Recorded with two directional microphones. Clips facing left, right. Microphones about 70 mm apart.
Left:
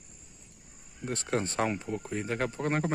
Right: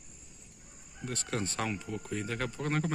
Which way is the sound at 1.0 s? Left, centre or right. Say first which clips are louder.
Left 4 dB; left.